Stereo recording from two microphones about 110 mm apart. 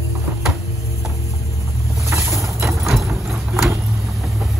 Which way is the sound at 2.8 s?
Centre (ahead or behind).